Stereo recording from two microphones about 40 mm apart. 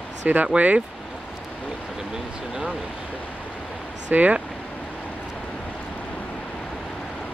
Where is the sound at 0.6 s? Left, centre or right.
Right.